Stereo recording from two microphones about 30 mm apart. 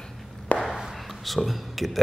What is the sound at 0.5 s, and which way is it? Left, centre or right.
Chop, left.